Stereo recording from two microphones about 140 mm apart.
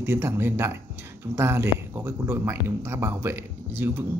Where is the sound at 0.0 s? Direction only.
15° right (ahead or behind).